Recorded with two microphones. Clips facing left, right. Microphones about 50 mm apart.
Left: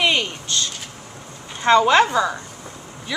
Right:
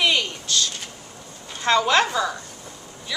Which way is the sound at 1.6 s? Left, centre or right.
Left.